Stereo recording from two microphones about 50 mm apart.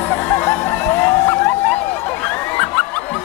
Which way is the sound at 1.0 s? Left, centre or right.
Left.